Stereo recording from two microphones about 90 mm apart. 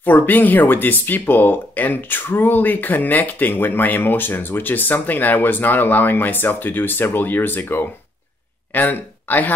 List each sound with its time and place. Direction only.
0.0 s speech: 20° left (ahead or behind)